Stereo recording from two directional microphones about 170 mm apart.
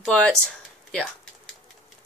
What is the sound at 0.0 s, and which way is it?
Speech, 5° left (ahead or behind).